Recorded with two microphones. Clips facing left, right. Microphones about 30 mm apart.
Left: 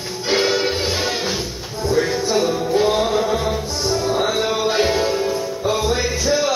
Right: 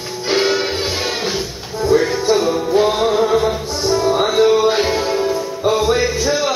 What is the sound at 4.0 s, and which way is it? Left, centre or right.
Music, right.